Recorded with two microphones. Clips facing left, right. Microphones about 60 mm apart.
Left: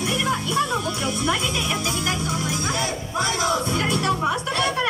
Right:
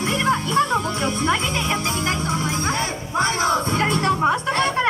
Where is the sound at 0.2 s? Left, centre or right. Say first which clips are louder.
Right 5 dB; right.